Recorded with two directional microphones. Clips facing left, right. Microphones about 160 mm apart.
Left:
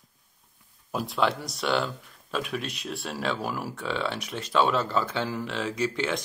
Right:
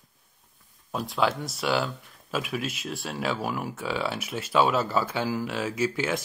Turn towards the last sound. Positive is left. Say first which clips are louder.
# right 1 dB
turn(degrees=-5)  # may be behind; listen again after turning